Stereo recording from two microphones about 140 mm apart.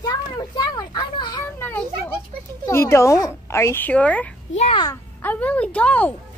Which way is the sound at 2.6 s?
20° left (ahead or behind).